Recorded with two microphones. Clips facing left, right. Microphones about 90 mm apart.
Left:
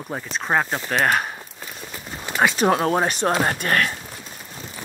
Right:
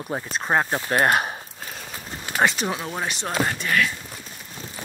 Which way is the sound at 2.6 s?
55° left (ahead or behind).